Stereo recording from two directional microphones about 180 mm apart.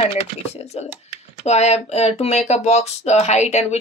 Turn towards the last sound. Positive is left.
turn(degrees=35)  # may be behind; listen again after turning